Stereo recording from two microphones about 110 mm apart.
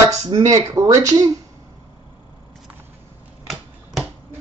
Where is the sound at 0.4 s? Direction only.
30° right (ahead or behind).